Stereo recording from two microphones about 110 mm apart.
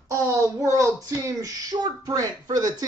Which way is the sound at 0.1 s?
25° right (ahead or behind).